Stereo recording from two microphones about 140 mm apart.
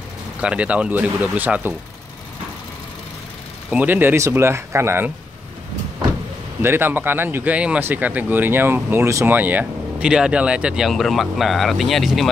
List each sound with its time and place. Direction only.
0.4 s speech: 10° right (ahead or behind)
3.7 s speech: 15° right (ahead or behind)
6.6 s speech: 15° right (ahead or behind); by 12.3 s centre (ahead or behind)